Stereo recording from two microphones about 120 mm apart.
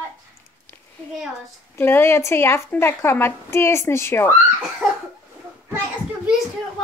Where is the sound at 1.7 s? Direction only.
20° left (ahead or behind).